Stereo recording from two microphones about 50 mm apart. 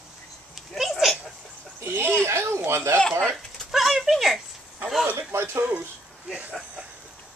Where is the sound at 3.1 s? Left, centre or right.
Centre.